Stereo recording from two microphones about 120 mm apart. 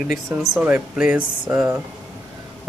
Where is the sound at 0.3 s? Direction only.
10° right (ahead or behind).